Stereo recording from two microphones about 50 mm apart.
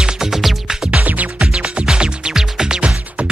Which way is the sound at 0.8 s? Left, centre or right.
Right.